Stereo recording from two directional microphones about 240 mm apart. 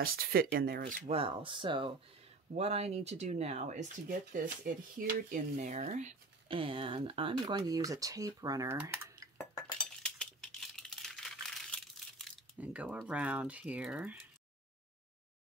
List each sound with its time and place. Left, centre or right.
0.0 s speech: right
5.0 s speech: right; by 9.3 s centre
9.4 s chink: centre
10.0 s a sound: centre